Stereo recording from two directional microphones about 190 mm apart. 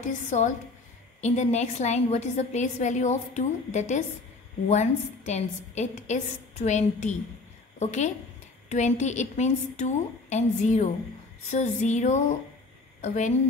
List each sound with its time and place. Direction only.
0.0 s a woman's voice: 40° left (ahead or behind)